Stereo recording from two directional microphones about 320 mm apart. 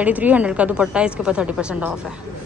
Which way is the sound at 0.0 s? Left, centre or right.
Centre.